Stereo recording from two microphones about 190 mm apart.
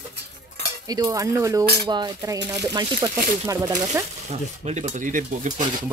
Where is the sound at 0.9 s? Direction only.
20° right (ahead or behind).